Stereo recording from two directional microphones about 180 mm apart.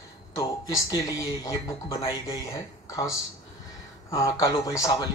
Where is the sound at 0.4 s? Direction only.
20° left (ahead or behind).